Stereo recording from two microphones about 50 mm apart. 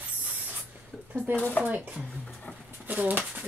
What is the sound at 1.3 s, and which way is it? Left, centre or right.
Speech, left.